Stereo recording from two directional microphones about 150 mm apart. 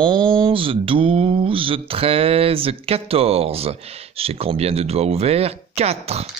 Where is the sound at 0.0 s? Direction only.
30° right (ahead or behind).